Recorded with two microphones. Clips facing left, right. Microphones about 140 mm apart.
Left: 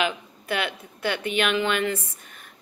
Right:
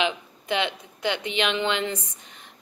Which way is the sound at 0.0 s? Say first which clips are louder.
Even; 20° right (ahead or behind).